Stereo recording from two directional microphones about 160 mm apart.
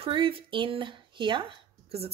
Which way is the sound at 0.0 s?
35° right (ahead or behind).